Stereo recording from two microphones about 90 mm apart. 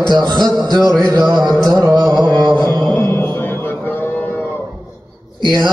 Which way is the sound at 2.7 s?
25° left (ahead or behind).